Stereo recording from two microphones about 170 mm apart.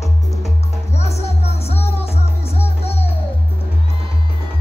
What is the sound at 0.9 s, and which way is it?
Music, 40° left (ahead or behind).